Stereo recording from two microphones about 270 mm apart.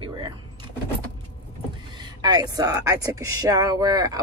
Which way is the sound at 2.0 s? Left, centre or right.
Centre.